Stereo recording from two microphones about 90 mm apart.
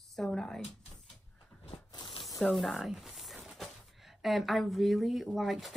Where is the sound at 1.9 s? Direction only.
70° left (ahead or behind).